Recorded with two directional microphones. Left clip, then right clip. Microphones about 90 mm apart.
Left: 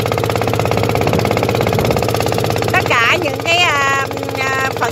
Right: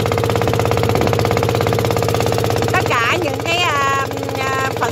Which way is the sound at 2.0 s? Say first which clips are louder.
Left 1 dB; 15° left (ahead or behind).